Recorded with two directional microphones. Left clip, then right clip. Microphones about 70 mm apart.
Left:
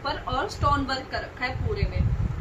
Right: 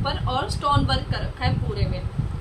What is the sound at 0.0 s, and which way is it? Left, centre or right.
A woman's voice, right.